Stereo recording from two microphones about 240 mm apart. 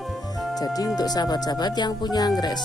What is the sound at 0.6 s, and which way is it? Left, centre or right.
Speech, centre.